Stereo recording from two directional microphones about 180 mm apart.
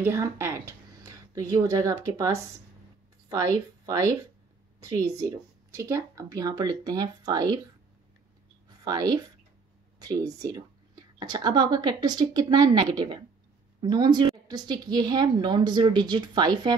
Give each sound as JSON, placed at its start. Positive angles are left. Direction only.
{"t": 0.0, "sound": "a woman's voice", "side_deg": -15}
{"t": 8.6, "sound": "a sound", "side_deg": -20}
{"t": 9.9, "sound": "a woman's voice", "side_deg": -20}